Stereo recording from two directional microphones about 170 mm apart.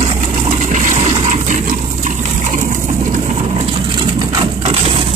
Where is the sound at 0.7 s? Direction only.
45° right (ahead or behind).